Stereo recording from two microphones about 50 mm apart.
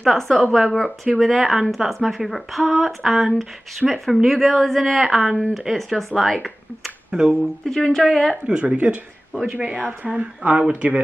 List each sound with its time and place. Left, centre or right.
0.0 s speech: centre
7.1 s speech: centre
7.6 s a woman's voice: centre
8.5 s speech: right